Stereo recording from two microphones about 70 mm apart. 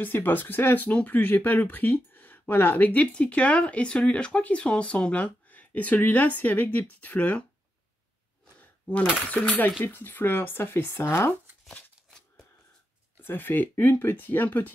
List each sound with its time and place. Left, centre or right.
0.0 s speech: left
9.4 s speech: left
13.2 s speech: left